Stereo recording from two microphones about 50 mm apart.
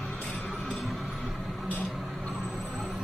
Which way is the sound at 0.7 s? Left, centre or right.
Centre.